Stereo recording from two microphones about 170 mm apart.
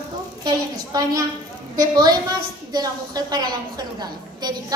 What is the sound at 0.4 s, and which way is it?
A woman's voice, 20° right (ahead or behind).